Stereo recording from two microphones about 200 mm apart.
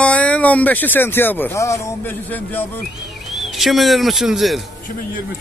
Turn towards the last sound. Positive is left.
turn(degrees=0)  # may be behind; listen again after turning